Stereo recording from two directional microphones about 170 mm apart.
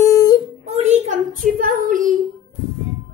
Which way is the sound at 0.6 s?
40° right (ahead or behind).